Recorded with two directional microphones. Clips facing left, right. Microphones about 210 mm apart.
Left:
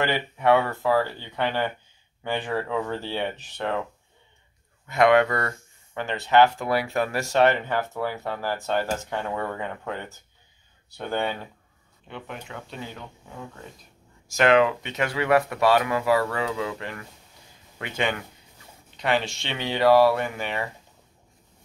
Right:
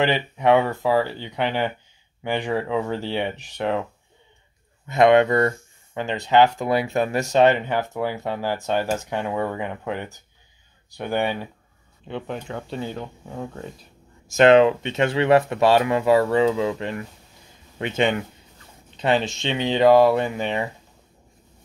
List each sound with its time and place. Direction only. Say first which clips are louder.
0.0 s speech: right 3 dB; 20° right (ahead or behind)
4.8 s speech: right 3 dB; 20° right (ahead or behind)
12.1 s speech: right 7 dB; 30° right (ahead or behind)